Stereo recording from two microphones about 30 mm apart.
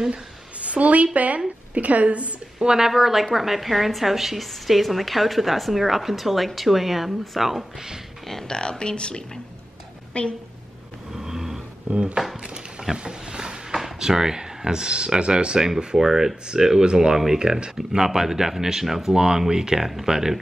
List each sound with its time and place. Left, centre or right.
0.7 s a woman's voice: right
2.6 s speech: right
3.0 s a woman's voice: centre
8.5 s a woman's voice: left
11.1 s vehicle: centre
11.9 s speech: right
12.9 s a sound: right
13.9 s speech: centre
16.0 s speech: centre
19.1 s speech: right